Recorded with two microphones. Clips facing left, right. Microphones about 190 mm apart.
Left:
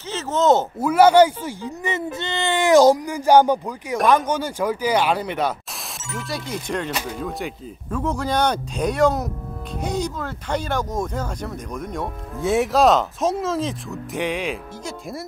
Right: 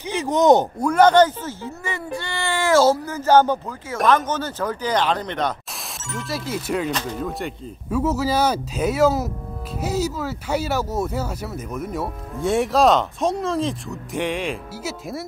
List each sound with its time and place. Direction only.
0.0 s speech: 15° right (ahead or behind)
0.7 s speech: 5° left (ahead or behind)
6.9 s speech: 10° left (ahead or behind)
7.2 s speech: centre (ahead or behind)